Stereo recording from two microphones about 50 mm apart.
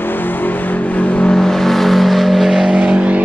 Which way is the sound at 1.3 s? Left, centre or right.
Centre.